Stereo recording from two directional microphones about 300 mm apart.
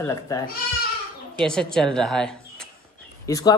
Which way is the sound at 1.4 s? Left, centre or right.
Centre.